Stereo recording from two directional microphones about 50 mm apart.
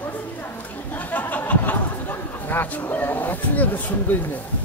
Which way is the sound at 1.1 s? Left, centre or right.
Left.